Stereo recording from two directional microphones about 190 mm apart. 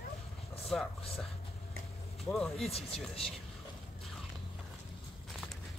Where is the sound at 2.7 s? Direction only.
30° left (ahead or behind).